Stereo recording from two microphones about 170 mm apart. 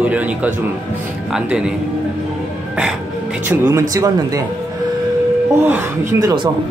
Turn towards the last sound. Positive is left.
turn(degrees=-20)  # may be behind; listen again after turning